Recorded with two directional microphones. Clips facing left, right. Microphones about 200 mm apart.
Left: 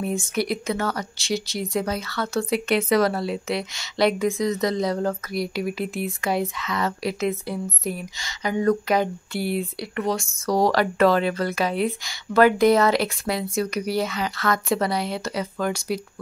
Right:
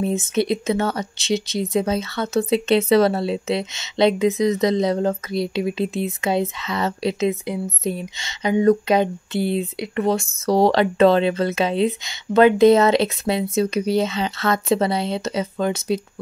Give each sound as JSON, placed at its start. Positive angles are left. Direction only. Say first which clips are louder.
{"t": 0.0, "sound": "speech", "louder": "right 4 dB", "side_deg": -20}